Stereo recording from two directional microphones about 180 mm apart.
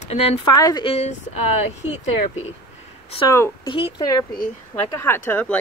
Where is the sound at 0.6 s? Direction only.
20° left (ahead or behind).